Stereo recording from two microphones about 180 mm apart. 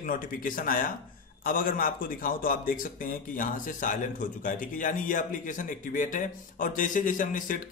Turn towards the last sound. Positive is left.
turn(degrees=45)  # may be behind; listen again after turning